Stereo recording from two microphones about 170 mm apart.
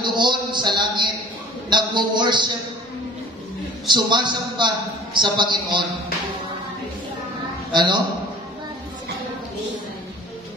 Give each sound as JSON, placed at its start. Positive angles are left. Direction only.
{"t": 0.0, "sound": "a sound", "side_deg": -25}
{"t": 1.7, "sound": "a man's voice", "side_deg": -25}
{"t": 3.8, "sound": "a man's voice", "side_deg": -25}
{"t": 7.7, "sound": "a man's voice", "side_deg": -25}